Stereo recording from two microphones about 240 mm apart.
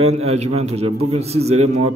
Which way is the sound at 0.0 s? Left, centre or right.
Right.